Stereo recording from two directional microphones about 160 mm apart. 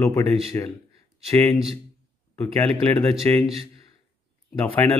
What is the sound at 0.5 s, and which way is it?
Speech, 20° left (ahead or behind).